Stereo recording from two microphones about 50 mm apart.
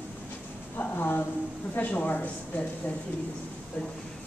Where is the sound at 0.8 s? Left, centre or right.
Left.